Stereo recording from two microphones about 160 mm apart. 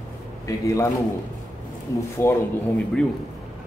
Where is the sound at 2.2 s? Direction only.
15° left (ahead or behind).